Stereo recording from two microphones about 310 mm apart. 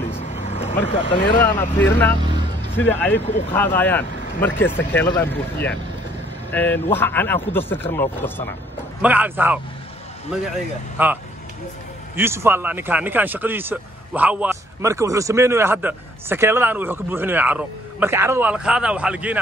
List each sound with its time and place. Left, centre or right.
0.1 s vehicle: left
0.8 s speech: centre
1.4 s speech: centre
9.0 s a man's voice: centre
11.0 s speech: centre
12.2 s speech: centre